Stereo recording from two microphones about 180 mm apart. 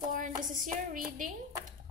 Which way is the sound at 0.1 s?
45° right (ahead or behind).